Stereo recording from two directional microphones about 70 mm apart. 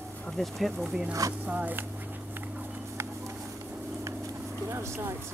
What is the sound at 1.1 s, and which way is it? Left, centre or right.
Speech, right.